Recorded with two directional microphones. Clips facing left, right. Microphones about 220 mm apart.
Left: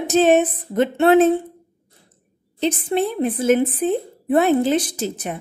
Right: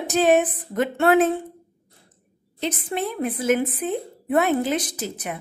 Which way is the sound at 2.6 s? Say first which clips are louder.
Left 6 dB; 30° left (ahead or behind).